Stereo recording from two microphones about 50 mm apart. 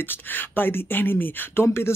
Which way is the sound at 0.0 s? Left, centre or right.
Left.